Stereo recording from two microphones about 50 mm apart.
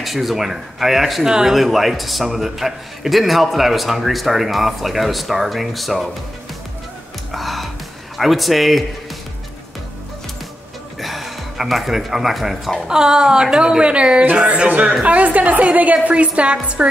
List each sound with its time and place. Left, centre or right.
0.0 s a man's voice: centre
7.3 s music: centre
8.2 s a man's voice: centre
11.0 s a woman's voice: centre; by 16.9 s right